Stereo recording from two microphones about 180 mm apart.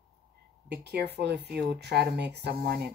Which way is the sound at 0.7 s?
65° right (ahead or behind).